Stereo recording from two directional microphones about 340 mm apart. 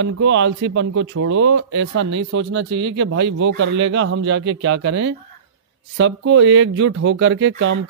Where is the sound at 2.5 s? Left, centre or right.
Right.